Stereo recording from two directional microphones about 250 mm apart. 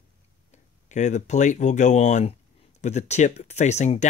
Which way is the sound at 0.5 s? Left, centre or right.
Left.